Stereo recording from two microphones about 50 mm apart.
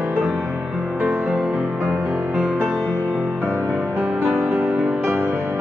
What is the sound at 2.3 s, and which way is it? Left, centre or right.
Music, centre.